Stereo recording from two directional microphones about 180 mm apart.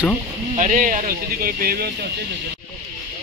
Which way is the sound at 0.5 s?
45° right (ahead or behind).